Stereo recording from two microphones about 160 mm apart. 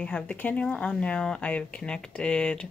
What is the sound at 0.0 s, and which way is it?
Speech, 5° left (ahead or behind).